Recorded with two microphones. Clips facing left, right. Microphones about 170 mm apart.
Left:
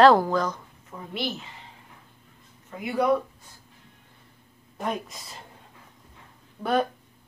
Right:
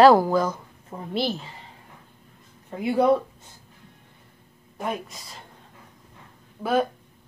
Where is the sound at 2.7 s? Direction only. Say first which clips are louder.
Right 4 dB; 30° right (ahead or behind).